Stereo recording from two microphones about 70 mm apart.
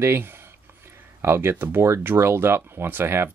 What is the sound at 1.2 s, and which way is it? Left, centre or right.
Speech, right.